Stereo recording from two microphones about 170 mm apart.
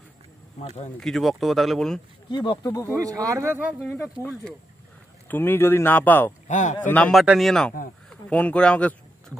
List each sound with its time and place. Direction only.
0.9 s speech: centre (ahead or behind)
2.2 s speech: 30° left (ahead or behind)
2.9 s speech: 20° right (ahead or behind)
3.9 s speech: 15° left (ahead or behind)
6.4 s speech: 45° left (ahead or behind)
6.9 s speech: 10° left (ahead or behind)